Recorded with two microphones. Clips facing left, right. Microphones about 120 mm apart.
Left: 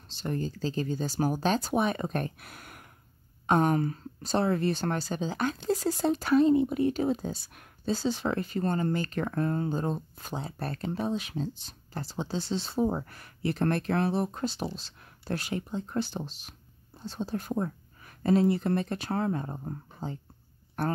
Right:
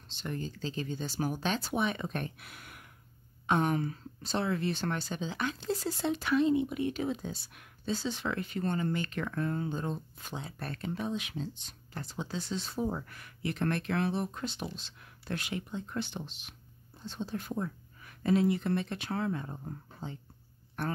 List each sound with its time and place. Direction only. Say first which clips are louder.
0.1 s speech: left 5 dB; 40° left (ahead or behind)